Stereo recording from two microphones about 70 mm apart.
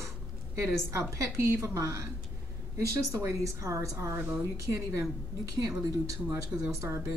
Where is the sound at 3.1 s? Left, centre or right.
Right.